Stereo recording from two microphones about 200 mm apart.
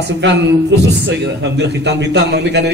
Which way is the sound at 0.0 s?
60° right (ahead or behind).